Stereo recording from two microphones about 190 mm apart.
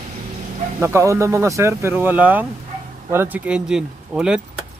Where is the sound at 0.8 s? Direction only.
15° right (ahead or behind).